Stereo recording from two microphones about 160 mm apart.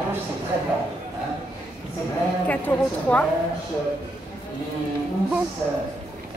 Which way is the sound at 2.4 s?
10° left (ahead or behind).